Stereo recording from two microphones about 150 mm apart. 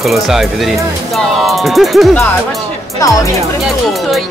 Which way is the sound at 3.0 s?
25° left (ahead or behind).